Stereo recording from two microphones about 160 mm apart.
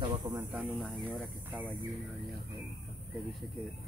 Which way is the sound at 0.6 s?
Centre (ahead or behind).